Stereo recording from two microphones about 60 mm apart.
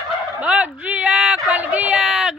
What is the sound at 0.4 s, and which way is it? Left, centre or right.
Dog, right.